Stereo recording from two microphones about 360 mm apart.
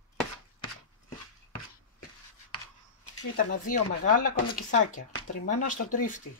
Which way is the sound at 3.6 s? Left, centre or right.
Left.